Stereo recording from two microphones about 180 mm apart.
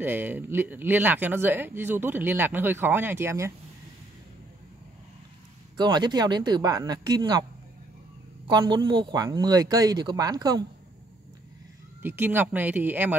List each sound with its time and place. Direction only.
0.0 s speech: 10° right (ahead or behind)
5.8 s speech: 25° right (ahead or behind)
8.5 s speech: 25° right (ahead or behind)
12.0 s speech: 10° right (ahead or behind)